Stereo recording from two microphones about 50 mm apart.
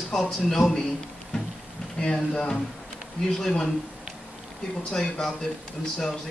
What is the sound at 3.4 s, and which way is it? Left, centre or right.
Speech, centre.